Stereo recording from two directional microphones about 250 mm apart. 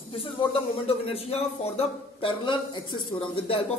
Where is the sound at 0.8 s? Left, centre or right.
Left.